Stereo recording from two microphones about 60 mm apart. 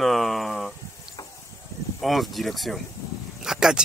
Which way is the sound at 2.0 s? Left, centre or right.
Centre.